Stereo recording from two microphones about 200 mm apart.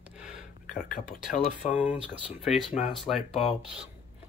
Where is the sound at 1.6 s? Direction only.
5° right (ahead or behind).